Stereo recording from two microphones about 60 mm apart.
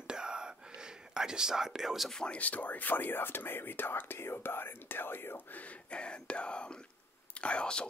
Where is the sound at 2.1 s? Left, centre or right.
Centre.